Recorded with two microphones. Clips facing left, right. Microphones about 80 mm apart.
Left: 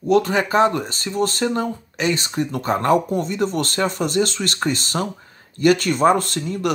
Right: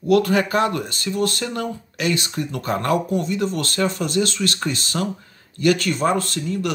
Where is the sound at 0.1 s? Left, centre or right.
Left.